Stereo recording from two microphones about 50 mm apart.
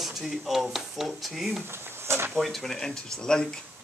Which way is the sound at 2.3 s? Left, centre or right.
Centre.